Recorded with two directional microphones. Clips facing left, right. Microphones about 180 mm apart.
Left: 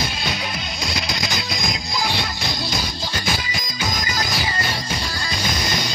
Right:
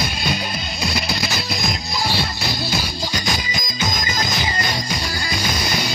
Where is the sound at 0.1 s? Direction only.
10° right (ahead or behind).